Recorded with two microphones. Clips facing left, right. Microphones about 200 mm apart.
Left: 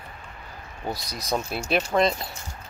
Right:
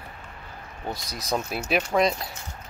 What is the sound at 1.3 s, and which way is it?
Speech, 5° right (ahead or behind).